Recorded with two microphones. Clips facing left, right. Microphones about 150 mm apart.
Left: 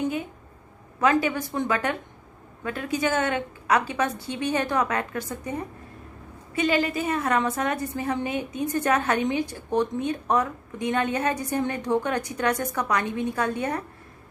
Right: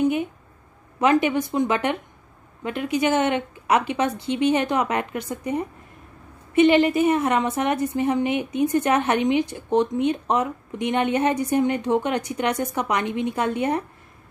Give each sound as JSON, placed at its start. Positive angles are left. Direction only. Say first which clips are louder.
{"t": 0.9, "sound": "a woman's voice", "louder": "right 3 dB", "side_deg": -20}